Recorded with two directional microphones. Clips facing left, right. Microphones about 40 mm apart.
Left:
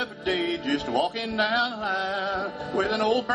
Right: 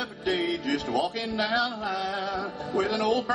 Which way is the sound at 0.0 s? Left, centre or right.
Left.